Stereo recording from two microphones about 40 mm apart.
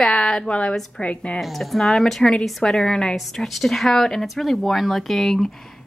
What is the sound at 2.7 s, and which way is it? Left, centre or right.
A woman's voice, centre.